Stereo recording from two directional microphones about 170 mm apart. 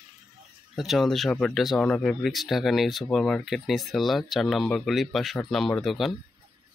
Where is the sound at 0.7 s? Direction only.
Centre (ahead or behind).